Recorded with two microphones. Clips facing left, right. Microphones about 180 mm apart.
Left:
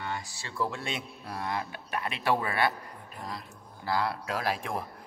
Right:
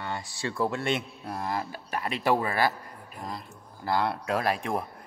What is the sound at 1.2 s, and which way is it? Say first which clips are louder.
Speech: right 2 dB; 25° right (ahead or behind).